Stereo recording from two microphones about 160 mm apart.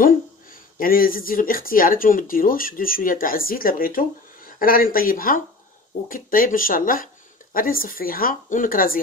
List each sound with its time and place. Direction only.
0.0 s speech: 60° left (ahead or behind)